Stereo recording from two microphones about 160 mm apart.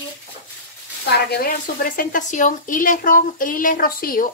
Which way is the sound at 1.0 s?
90° left.